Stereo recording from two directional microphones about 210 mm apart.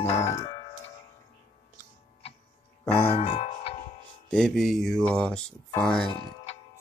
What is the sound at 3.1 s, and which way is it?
Music, 25° left (ahead or behind).